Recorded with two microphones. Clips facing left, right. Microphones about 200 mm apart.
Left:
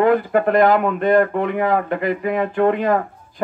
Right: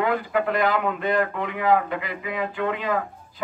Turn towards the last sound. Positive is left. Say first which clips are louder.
# left 8 dB
turn(degrees=50)  # may be behind; listen again after turning